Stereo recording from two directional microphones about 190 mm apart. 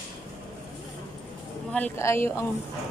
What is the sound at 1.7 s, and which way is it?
Speech, 10° left (ahead or behind).